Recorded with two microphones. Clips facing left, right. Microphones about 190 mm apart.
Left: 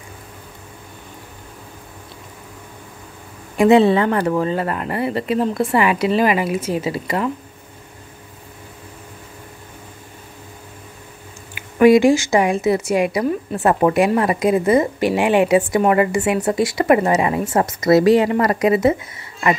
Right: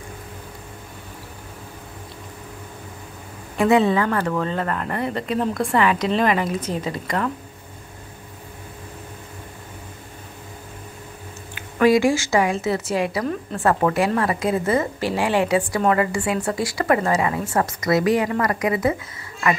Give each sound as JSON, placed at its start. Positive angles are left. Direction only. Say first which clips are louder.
{"t": 3.5, "sound": "speech", "louder": "left 5 dB", "side_deg": 25}
{"t": 11.5, "sound": "a woman's voice", "louder": "left 5 dB", "side_deg": 20}